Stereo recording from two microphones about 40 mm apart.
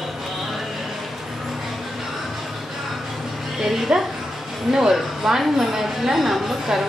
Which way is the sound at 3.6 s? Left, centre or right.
Centre.